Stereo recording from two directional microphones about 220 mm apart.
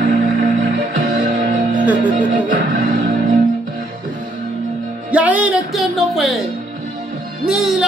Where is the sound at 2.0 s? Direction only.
35° right (ahead or behind).